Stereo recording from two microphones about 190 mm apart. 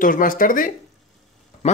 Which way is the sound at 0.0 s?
45° left (ahead or behind).